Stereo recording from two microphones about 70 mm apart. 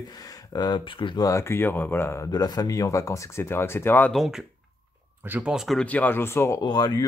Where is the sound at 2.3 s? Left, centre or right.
Left.